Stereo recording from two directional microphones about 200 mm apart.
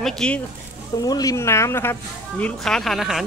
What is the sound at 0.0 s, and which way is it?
Speech, 5° left (ahead or behind).